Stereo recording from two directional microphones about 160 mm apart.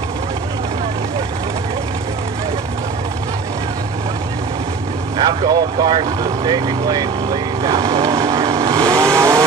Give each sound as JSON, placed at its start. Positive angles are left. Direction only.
{"t": 5.1, "sound": "speech", "side_deg": -30}
{"t": 8.0, "sound": "vehicle", "side_deg": -20}